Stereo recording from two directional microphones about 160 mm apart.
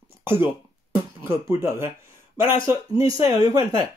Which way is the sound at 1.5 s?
15° right (ahead or behind).